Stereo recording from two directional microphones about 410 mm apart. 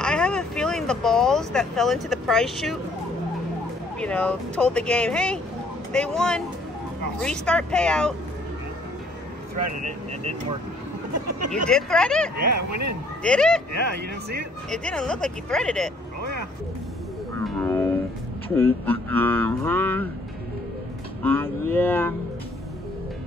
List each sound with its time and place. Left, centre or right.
0.0 s speech: centre
4.0 s speech: centre
9.8 s speech: centre
11.1 s speech: right
11.7 s speech: centre
12.4 s speech: right
13.2 s speech: centre
14.7 s speech: centre
16.2 s vehicle: right
17.6 s music: centre
18.6 s speech: centre
21.2 s speech: centre